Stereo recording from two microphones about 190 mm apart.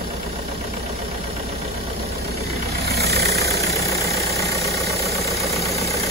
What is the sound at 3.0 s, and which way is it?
Vehicle, 60° right (ahead or behind).